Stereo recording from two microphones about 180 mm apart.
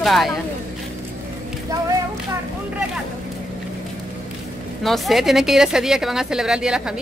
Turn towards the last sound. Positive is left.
turn(degrees=-5)  # may be behind; listen again after turning